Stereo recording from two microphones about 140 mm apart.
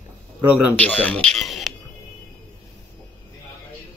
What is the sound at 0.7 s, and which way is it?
Speech, 10° left (ahead or behind).